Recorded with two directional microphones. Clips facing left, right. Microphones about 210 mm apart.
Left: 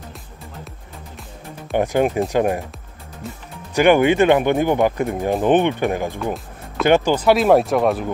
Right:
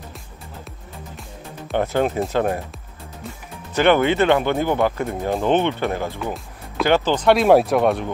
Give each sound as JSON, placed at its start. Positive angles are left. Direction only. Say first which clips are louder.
{"t": 1.8, "sound": "speech", "louder": "left 2 dB", "side_deg": 15}
{"t": 3.7, "sound": "speech", "louder": "left 3 dB", "side_deg": 10}